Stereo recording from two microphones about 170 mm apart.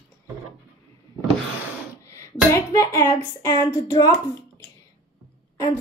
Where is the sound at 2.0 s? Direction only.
15° left (ahead or behind).